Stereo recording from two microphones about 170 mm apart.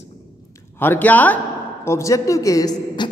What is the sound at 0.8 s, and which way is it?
A man's voice, 10° left (ahead or behind).